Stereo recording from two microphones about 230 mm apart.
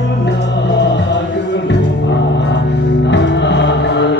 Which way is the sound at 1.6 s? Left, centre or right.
Left.